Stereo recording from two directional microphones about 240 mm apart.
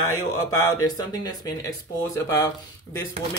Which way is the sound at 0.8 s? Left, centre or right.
Centre.